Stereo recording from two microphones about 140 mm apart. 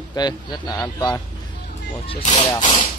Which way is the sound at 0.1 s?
30° left (ahead or behind).